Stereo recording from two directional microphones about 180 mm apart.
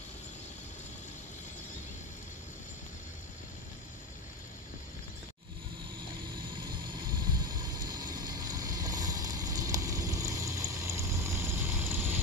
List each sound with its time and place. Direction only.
7.4 s vehicle: 20° right (ahead or behind)